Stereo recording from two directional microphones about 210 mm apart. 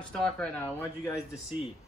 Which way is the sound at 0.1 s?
5° left (ahead or behind).